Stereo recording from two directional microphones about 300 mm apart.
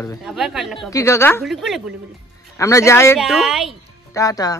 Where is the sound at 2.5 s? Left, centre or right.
Centre.